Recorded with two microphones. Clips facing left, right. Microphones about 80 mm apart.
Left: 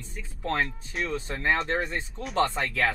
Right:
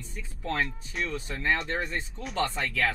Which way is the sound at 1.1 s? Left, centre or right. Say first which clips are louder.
Left 2 dB; left.